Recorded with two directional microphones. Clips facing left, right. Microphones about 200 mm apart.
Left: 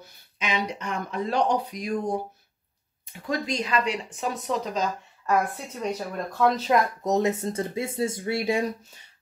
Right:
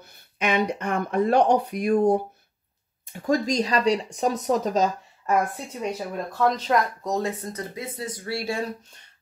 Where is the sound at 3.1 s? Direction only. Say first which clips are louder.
Right 6 dB; 40° right (ahead or behind).